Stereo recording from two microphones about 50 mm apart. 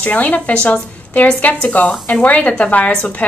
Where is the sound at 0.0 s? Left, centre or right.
Left.